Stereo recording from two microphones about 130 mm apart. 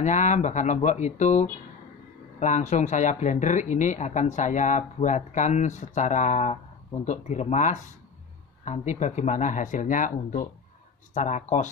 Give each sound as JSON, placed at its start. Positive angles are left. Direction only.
{"t": 0.0, "sound": "speech", "side_deg": 70}
{"t": 11.1, "sound": "speech", "side_deg": 70}